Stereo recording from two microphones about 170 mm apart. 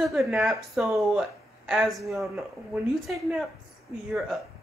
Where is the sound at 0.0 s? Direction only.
5° right (ahead or behind).